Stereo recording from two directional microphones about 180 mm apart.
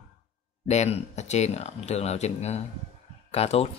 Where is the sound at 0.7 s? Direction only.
35° left (ahead or behind).